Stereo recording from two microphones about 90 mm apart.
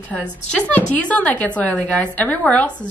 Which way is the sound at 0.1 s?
15° left (ahead or behind).